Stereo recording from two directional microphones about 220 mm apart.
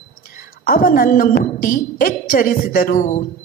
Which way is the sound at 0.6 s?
40° left (ahead or behind).